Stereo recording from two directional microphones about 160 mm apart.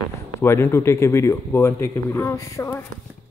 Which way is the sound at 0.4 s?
15° left (ahead or behind).